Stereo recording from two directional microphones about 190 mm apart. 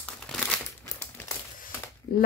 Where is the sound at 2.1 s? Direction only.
50° left (ahead or behind).